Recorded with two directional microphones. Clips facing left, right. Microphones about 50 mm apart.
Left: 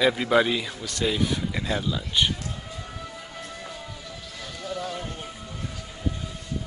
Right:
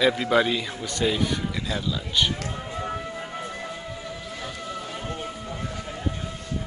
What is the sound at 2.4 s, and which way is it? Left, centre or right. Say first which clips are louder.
Music: right 6 dB; right.